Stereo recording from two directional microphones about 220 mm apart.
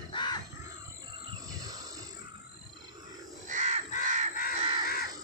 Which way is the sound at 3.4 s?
35° right (ahead or behind).